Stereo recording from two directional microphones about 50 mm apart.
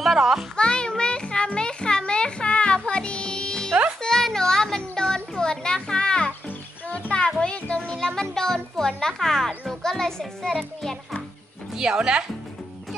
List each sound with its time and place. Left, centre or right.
0.0 s a child's voice: centre
0.6 s music: centre
4.0 s a sound: centre
5.4 s children playing: centre
6.9 s music: left
10.6 s a child's voice: centre
11.7 s speech: centre